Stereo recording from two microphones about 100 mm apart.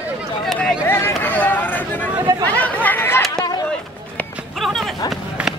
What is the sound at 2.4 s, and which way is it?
Chatter, 15° left (ahead or behind).